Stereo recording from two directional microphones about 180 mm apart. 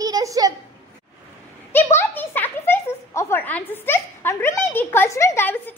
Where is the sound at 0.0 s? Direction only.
20° right (ahead or behind).